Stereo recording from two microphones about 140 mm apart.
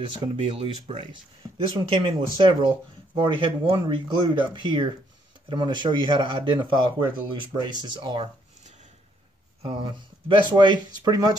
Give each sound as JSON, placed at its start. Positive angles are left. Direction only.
{"t": 0.0, "sound": "speech", "side_deg": -40}
{"t": 9.7, "sound": "speech", "side_deg": -35}